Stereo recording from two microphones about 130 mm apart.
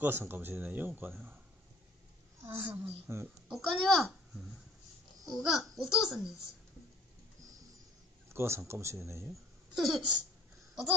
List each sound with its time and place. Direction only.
0.0 s a man's voice: 15° right (ahead or behind)
2.4 s speech: 20° right (ahead or behind)
3.4 s a child's voice: centre (ahead or behind)
8.3 s speech: 20° right (ahead or behind)
9.8 s speech: centre (ahead or behind)